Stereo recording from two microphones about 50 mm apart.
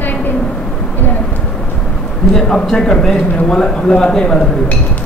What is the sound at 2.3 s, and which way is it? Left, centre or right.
Speech, centre.